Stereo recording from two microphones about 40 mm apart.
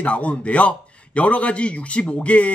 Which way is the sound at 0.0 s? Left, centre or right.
Left.